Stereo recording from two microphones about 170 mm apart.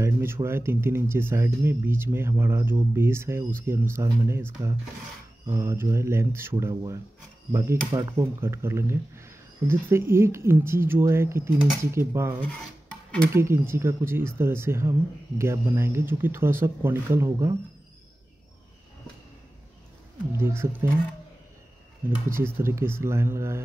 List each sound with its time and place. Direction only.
0.0 s speech: 15° right (ahead or behind)
8.2 s speech: 15° right (ahead or behind)
12.4 s filing: 10° left (ahead or behind)
13.3 s speech: 15° right (ahead or behind)
20.3 s speech: 15° right (ahead or behind)
22.1 s speech: 15° right (ahead or behind)